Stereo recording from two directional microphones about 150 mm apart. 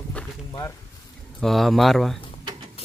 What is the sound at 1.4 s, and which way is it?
Speech, centre (ahead or behind).